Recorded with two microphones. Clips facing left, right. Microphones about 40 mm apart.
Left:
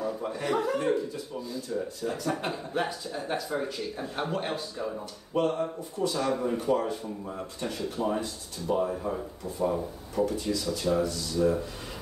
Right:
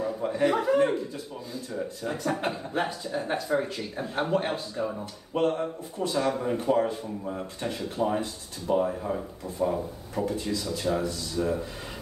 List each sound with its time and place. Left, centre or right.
0.0 s a sound: centre
0.5 s speech: centre
2.0 s speech: centre
5.3 s speech: right
10.5 s speech: right